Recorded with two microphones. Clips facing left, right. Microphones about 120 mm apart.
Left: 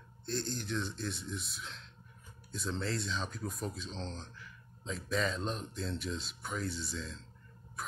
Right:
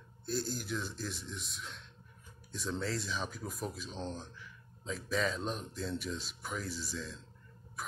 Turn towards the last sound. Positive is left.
turn(degrees=0)  # may be behind; listen again after turning